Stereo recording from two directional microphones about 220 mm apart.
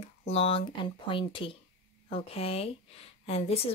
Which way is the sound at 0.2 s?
25° left (ahead or behind).